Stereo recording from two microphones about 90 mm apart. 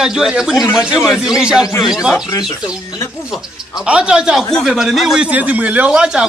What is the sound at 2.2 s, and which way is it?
Speech, 45° left (ahead or behind).